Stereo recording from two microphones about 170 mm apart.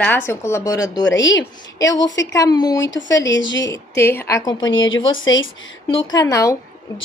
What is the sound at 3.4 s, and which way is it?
Speech, 90° left.